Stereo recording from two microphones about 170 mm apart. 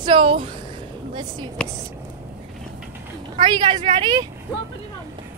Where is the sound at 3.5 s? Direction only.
25° right (ahead or behind).